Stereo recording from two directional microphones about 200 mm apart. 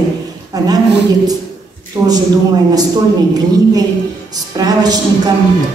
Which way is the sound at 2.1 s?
20° right (ahead or behind).